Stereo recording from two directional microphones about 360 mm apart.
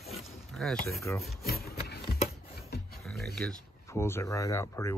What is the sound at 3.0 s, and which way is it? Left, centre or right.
Speech, centre.